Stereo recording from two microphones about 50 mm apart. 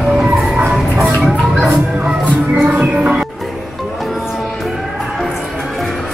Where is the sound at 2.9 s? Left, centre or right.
Right.